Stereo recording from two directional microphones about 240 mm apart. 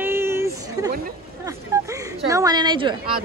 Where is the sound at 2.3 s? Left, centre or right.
Centre.